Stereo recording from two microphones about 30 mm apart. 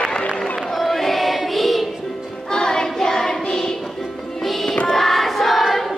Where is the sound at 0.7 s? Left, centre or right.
Centre.